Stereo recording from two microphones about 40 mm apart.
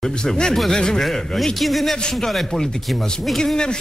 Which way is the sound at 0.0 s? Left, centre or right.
Centre.